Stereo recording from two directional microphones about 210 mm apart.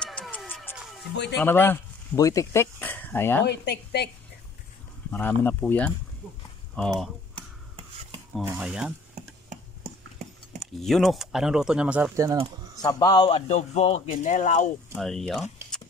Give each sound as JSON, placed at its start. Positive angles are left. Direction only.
{"t": 0.0, "sound": "music", "side_deg": 5}
{"t": 1.4, "sound": "speech", "side_deg": 10}
{"t": 3.4, "sound": "a woman's voice", "side_deg": 50}
{"t": 5.1, "sound": "speech", "side_deg": 10}
{"t": 6.2, "sound": "speech", "side_deg": -5}
{"t": 7.3, "sound": "rub", "side_deg": -25}
{"t": 8.4, "sound": "speech", "side_deg": -5}
{"t": 10.6, "sound": "speech", "side_deg": 0}
{"t": 12.8, "sound": "a man's voice", "side_deg": 20}
{"t": 15.0, "sound": "speech", "side_deg": 0}